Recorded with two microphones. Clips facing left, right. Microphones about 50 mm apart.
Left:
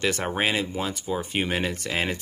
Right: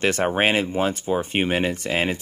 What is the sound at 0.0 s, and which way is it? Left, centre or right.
Speech, right.